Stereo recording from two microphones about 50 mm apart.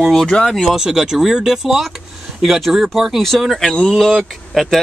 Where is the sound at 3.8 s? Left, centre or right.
Centre.